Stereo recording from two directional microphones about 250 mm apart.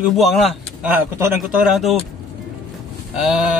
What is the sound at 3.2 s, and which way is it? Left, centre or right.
Speech, centre.